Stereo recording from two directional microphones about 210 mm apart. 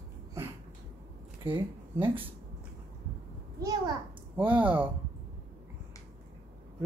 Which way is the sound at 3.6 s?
15° right (ahead or behind).